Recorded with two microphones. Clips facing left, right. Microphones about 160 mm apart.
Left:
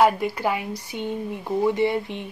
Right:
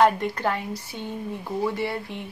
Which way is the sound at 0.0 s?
5° left (ahead or behind).